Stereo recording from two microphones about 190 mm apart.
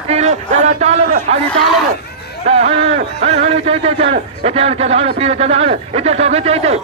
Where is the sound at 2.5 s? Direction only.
30° right (ahead or behind).